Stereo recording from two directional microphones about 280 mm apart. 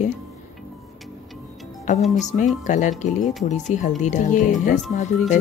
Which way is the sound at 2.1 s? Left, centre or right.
Left.